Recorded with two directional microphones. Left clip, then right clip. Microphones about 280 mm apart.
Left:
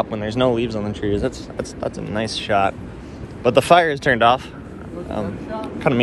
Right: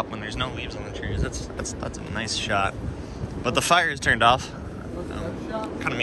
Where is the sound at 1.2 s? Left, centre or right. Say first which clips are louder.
Left 7 dB; centre.